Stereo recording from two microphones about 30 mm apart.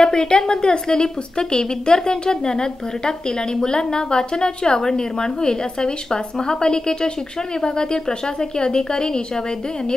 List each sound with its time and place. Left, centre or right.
0.0 s a woman's voice: left